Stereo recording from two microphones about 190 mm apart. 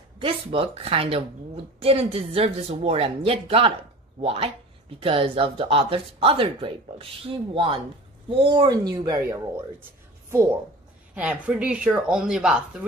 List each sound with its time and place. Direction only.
0.2 s a woman's voice: 30° right (ahead or behind)
11.1 s speech: 5° right (ahead or behind)